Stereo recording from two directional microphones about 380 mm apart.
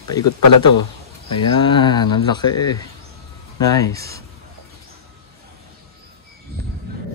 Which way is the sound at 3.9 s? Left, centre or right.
Right.